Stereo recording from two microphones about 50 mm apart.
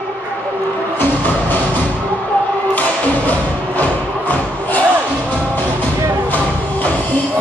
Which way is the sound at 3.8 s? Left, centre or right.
Left.